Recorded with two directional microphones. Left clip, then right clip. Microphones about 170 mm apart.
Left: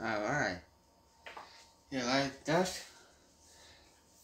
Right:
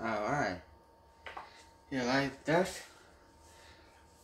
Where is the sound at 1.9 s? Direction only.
25° right (ahead or behind).